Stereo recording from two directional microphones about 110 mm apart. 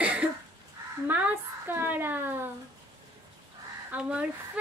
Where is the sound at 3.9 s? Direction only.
10° right (ahead or behind).